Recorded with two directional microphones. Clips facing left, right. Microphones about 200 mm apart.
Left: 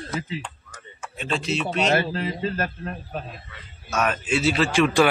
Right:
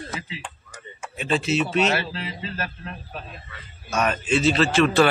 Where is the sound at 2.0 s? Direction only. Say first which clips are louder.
Left 5 dB; 45° left (ahead or behind).